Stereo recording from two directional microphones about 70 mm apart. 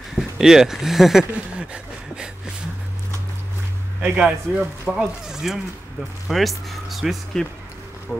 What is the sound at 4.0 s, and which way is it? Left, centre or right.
Speech, centre.